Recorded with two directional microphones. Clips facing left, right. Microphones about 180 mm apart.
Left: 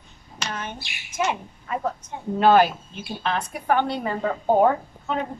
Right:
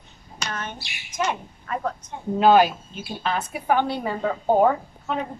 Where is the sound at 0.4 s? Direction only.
10° left (ahead or behind).